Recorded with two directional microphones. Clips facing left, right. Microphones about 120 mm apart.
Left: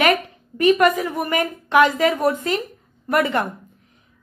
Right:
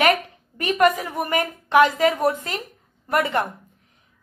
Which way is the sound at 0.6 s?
35° right (ahead or behind).